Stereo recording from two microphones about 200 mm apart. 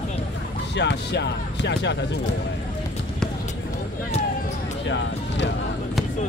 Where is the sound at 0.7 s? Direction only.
60° left (ahead or behind).